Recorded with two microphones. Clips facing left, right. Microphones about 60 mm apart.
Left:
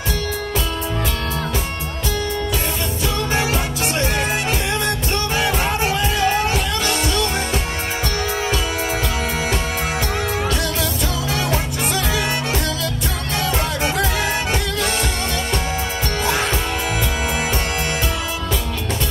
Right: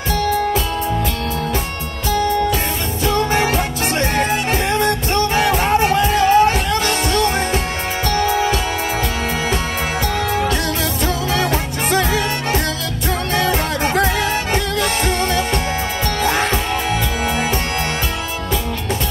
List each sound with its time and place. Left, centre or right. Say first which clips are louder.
3.2 s music: right 4 dB; right
11.3 s music: right 3 dB; right
16.3 s music: right 2 dB; right